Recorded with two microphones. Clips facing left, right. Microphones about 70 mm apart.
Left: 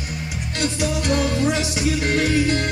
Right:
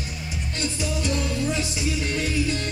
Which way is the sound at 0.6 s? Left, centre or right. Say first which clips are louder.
Left 5 dB; left.